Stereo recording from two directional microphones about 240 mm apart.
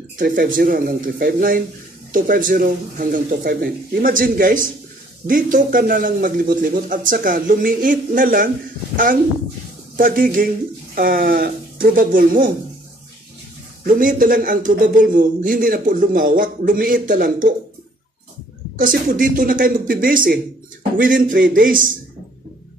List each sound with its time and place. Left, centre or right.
0.2 s speech: right
13.8 s speech: right
18.8 s speech: right